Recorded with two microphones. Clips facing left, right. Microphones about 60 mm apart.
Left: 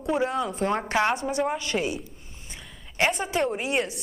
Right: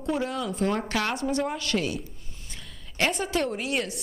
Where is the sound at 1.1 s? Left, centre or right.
Centre.